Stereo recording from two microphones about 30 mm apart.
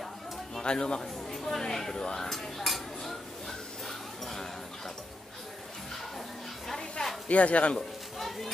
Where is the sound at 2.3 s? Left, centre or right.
Centre.